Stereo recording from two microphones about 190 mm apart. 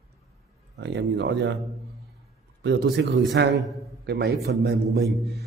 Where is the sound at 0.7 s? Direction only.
65° right (ahead or behind).